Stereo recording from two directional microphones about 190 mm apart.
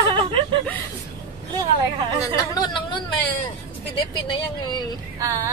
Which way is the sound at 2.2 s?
20° left (ahead or behind).